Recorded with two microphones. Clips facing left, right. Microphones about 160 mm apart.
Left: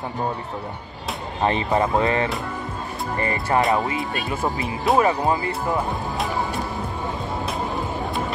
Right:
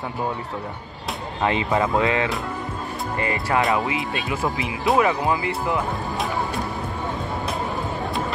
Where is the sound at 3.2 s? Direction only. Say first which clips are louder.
Left 1 dB; 35° left (ahead or behind).